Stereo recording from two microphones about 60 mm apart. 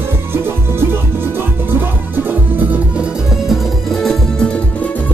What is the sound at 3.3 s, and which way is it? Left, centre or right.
Music, centre.